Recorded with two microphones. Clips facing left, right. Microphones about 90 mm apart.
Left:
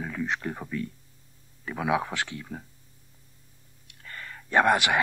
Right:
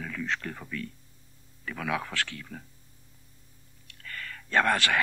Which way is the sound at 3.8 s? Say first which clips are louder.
Right 1 dB; 20° left (ahead or behind).